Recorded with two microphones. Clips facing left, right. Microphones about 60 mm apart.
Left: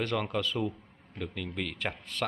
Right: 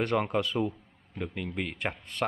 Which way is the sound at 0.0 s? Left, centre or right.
Right.